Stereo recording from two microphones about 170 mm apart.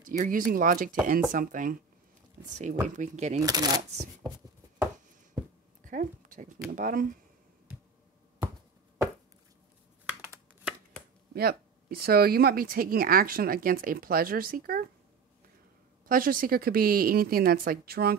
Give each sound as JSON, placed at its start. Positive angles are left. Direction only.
{"t": 0.0, "sound": "speech", "side_deg": -55}
{"t": 3.3, "sound": "speech", "side_deg": -20}
{"t": 5.9, "sound": "speech", "side_deg": -50}
{"t": 10.0, "sound": "computer keyboard", "side_deg": -10}
{"t": 11.3, "sound": "speech", "side_deg": -65}
{"t": 16.1, "sound": "speech", "side_deg": -55}